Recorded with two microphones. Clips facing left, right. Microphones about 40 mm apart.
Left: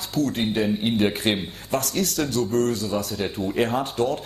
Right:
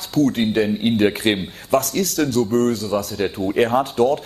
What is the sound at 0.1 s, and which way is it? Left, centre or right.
Speech, right.